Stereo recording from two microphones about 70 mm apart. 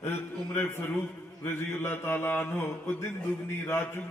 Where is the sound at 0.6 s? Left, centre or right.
Left.